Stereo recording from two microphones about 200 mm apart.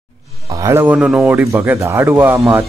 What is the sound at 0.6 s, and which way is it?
Speech, 15° right (ahead or behind).